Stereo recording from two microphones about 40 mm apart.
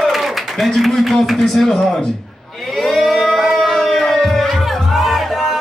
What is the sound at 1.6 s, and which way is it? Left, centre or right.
Speech, centre.